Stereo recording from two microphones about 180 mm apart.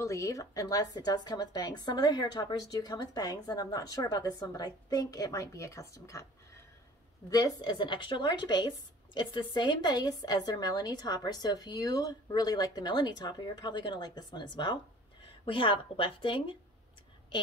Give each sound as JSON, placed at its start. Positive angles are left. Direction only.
{"t": 0.0, "sound": "speech", "side_deg": 15}
{"t": 7.2, "sound": "speech", "side_deg": 20}